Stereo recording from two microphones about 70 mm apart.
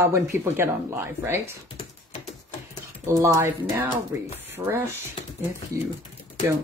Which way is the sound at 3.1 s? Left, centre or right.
Right.